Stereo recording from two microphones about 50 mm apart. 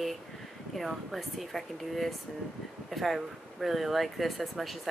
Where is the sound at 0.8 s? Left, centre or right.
Centre.